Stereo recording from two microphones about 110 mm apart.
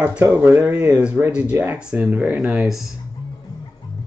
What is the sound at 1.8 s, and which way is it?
Speech, 5° right (ahead or behind).